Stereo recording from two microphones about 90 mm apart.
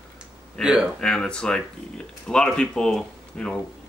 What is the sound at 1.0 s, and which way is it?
Speech, 10° left (ahead or behind).